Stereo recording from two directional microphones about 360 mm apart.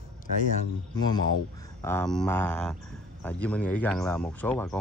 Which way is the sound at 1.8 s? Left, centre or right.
Centre.